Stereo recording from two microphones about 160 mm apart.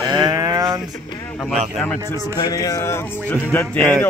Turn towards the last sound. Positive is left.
turn(degrees=10)  # may be behind; listen again after turning